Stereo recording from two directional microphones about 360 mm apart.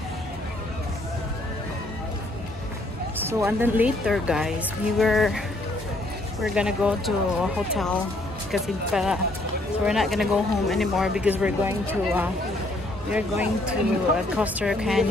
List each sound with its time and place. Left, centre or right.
3.3 s speech: centre
6.4 s speech: centre